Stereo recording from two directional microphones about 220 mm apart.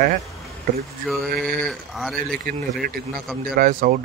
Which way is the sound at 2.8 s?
40° right (ahead or behind).